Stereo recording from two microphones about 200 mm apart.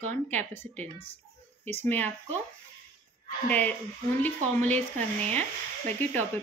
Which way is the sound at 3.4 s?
10° left (ahead or behind).